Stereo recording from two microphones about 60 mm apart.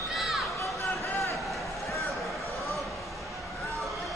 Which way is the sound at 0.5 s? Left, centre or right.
Left.